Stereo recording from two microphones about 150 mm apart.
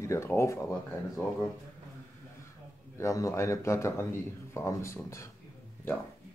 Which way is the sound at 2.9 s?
20° left (ahead or behind).